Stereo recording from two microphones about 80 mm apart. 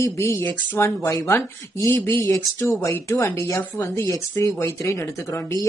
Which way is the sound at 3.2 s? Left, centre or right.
Left.